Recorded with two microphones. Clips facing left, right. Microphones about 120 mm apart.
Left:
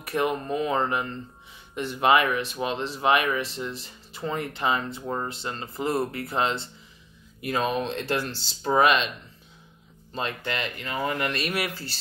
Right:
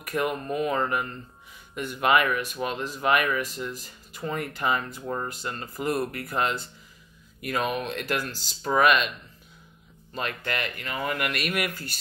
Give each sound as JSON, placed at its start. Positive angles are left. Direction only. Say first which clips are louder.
{"t": 0.1, "sound": "speech", "louder": "left 2 dB", "side_deg": 30}
{"t": 10.1, "sound": "speech", "louder": "left 1 dB", "side_deg": 25}